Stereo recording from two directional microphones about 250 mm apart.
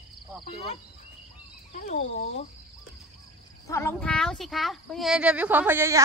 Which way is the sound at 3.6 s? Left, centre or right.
Centre.